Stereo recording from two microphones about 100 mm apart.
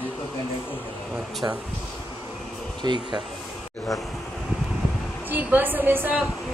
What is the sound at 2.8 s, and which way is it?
Speech, 45° right (ahead or behind).